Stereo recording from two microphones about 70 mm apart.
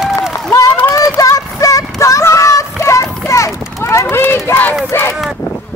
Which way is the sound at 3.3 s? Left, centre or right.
Left.